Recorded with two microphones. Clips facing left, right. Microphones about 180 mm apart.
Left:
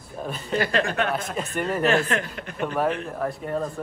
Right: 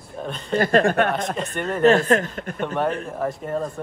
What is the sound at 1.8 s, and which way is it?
Speech, 40° right (ahead or behind).